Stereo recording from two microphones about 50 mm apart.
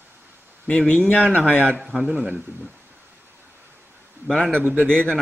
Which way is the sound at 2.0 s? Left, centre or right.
Right.